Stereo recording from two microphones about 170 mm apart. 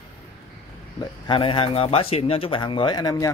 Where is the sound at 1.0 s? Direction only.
30° left (ahead or behind).